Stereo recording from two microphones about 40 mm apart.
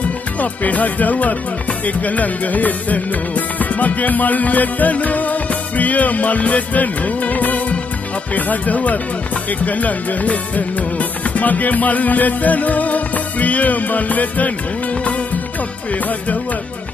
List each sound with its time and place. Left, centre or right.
0.4 s speech: left
9.5 s music: left
15.9 s speech: left